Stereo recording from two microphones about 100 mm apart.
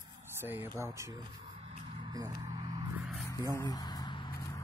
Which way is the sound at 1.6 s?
85° right.